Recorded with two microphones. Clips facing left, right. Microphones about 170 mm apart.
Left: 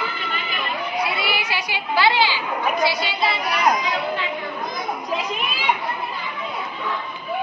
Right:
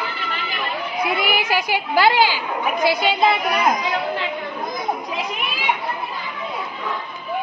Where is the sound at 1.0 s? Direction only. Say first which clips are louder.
Right 5 dB; 50° right (ahead or behind).